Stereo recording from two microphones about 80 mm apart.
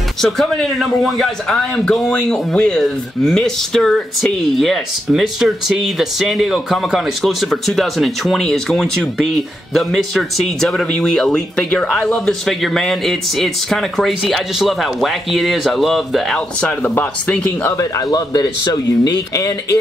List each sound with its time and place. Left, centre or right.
0.2 s a man's voice: centre
16.8 s speech: left
17.7 s speech: left